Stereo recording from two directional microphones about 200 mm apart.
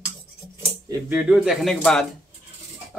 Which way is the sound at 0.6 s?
15° right (ahead or behind).